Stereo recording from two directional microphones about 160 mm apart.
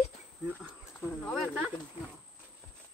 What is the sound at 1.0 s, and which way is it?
Speech, 5° left (ahead or behind).